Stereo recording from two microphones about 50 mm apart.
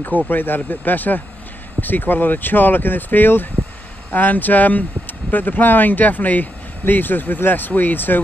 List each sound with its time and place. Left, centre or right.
0.3 s speech: left